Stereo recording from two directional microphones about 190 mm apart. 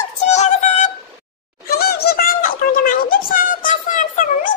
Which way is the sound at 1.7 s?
55° left (ahead or behind).